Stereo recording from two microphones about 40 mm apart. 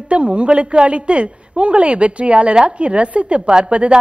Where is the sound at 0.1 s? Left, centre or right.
Right.